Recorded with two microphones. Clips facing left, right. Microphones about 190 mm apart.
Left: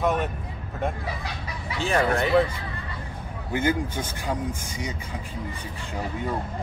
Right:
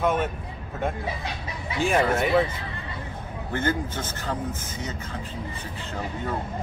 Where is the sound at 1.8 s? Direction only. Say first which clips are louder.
Right 1 dB; 10° right (ahead or behind).